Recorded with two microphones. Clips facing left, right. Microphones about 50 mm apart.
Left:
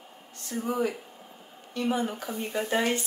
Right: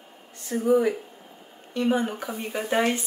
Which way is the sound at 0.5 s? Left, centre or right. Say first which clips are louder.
Right 5 dB; right.